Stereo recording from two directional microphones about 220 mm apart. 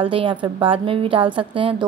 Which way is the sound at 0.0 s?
25° right (ahead or behind).